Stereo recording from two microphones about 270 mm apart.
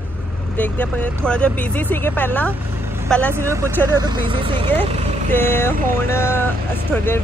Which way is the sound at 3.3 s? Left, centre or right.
Centre.